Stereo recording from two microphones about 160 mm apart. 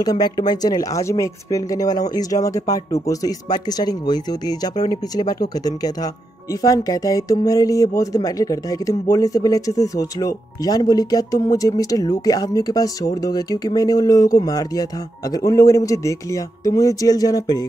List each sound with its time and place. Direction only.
0.0 s speech: 25° left (ahead or behind)